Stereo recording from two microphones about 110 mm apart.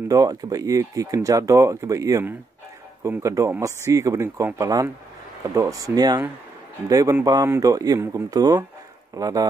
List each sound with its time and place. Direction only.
0.1 s a man's voice: 35° right (ahead or behind)